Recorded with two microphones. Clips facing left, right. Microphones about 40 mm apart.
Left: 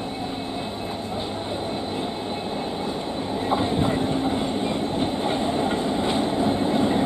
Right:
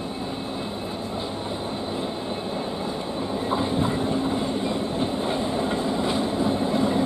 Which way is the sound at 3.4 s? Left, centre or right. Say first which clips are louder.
Left 2 dB; centre.